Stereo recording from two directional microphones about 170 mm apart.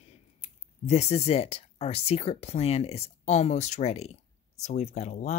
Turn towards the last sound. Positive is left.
turn(degrees=45)  # may be behind; listen again after turning